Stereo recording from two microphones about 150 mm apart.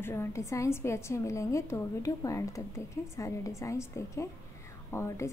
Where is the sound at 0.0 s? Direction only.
15° left (ahead or behind).